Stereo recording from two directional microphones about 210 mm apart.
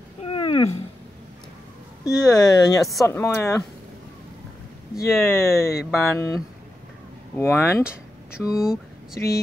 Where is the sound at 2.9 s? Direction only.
10° left (ahead or behind).